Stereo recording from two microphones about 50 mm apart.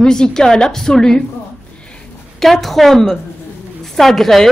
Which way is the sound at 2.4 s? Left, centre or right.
Centre.